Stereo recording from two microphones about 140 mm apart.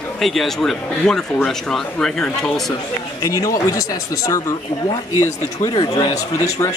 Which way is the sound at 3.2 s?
25° left (ahead or behind).